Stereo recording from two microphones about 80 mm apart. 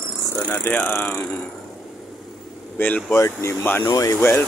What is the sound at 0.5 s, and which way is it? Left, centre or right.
Speech, left.